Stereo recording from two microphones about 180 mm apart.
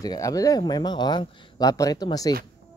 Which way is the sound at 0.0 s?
20° left (ahead or behind).